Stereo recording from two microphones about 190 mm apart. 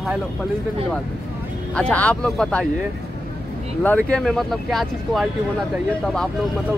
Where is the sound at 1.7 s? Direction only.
5° left (ahead or behind).